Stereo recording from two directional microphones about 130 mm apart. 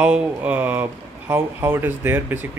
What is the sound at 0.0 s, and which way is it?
Speech, 10° right (ahead or behind).